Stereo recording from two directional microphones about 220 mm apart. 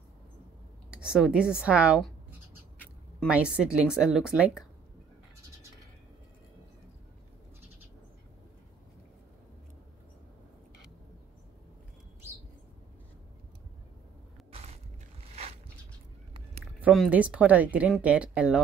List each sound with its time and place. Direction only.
0.8 s speech: 5° right (ahead or behind)
3.3 s speech: 5° right (ahead or behind)
14.5 s a sound: 30° right (ahead or behind)
16.8 s speech: 5° right (ahead or behind)